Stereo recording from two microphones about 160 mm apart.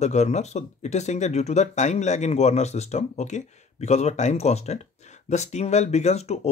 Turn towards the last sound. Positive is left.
turn(degrees=45)  # may be behind; listen again after turning